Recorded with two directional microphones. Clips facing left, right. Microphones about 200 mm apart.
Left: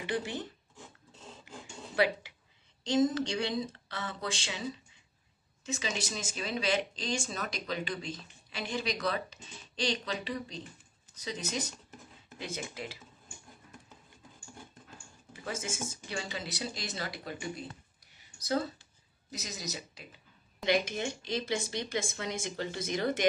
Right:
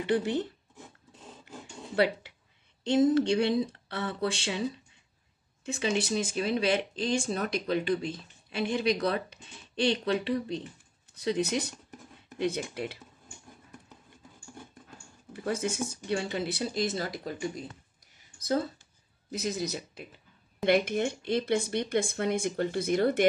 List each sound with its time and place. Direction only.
0.1 s speech: 60° right (ahead or behind)
0.7 s filing: 10° right (ahead or behind)
2.8 s speech: 60° right (ahead or behind)
5.7 s speech: 60° right (ahead or behind)
15.3 s speech: 60° right (ahead or behind); by 17.5 s 40° right (ahead or behind)
18.0 s a sound: 45° right (ahead or behind)
19.3 s speech: 55° right (ahead or behind)